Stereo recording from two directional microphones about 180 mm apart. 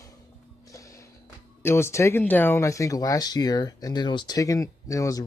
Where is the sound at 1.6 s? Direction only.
15° left (ahead or behind).